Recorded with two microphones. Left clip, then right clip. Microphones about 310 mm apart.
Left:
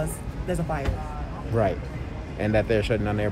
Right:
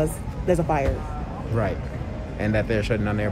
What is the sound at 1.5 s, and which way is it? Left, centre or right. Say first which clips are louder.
Speech: left 3 dB; centre.